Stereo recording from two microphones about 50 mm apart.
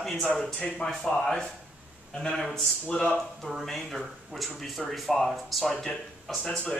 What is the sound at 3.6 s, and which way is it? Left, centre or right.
A man's voice, centre.